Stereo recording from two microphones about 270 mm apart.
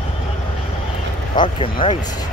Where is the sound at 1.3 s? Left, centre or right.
Centre.